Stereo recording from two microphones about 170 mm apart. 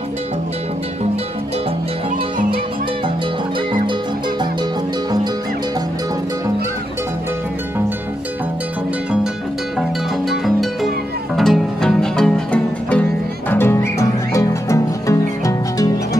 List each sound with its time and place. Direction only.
9.8 s music: centre (ahead or behind); by 16.2 s 20° left (ahead or behind)